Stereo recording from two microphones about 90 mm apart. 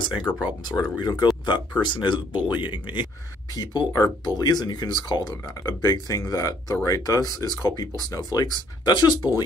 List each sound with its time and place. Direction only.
0.2 s speech: 50° left (ahead or behind)
3.5 s speech: 45° left (ahead or behind)